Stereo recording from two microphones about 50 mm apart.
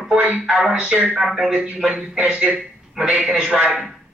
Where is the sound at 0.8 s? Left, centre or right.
Right.